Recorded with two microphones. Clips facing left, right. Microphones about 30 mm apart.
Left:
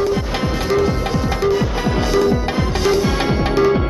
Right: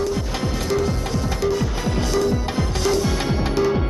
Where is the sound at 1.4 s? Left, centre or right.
Left.